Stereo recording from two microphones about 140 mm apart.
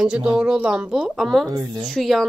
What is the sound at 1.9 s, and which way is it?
Speech, centre (ahead or behind).